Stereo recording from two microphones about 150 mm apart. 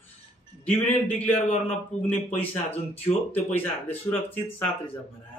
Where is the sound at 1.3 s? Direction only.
45° left (ahead or behind).